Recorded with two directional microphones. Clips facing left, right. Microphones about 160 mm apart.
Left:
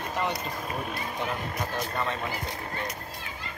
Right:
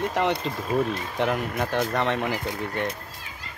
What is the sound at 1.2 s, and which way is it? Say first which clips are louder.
Speech: right 8 dB; 65° right (ahead or behind).